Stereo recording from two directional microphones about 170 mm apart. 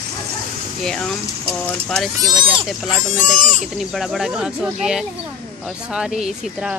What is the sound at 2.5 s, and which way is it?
Speech, centre (ahead or behind).